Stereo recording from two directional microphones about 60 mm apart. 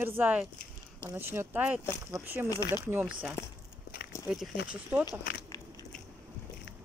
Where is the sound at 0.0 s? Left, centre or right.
Right.